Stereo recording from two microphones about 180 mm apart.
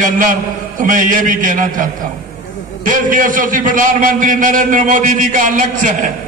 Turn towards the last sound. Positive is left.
turn(degrees=-45)  # may be behind; listen again after turning